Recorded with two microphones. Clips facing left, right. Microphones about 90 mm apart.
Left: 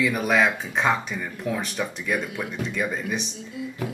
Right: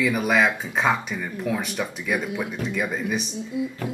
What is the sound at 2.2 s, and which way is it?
Speech, 15° right (ahead or behind).